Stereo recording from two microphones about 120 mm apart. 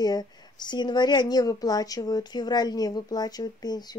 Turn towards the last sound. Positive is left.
turn(degrees=35)  # may be behind; listen again after turning